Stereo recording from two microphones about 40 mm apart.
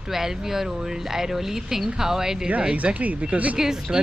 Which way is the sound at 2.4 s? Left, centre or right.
Right.